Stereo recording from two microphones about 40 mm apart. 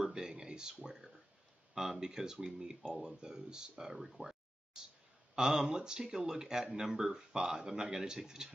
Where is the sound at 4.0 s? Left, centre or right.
Centre.